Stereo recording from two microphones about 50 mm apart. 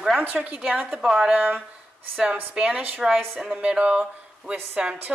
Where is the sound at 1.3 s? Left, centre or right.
Right.